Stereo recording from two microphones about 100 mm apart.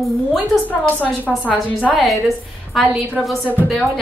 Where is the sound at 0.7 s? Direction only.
15° left (ahead or behind).